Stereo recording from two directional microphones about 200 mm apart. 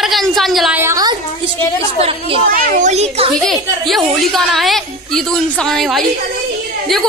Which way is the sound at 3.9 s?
Centre (ahead or behind).